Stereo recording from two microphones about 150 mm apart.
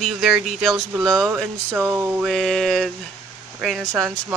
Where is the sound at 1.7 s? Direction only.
15° right (ahead or behind).